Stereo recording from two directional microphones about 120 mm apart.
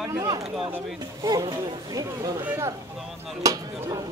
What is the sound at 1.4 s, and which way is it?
Speech, 35° right (ahead or behind).